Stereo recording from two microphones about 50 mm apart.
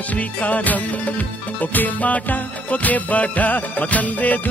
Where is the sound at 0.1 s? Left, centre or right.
Left.